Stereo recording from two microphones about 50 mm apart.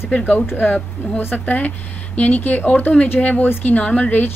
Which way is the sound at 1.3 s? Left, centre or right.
Left.